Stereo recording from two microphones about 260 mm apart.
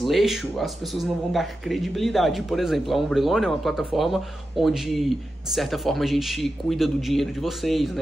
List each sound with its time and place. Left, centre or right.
0.0 s speech: centre